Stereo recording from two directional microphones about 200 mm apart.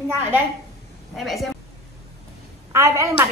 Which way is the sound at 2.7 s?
15° right (ahead or behind).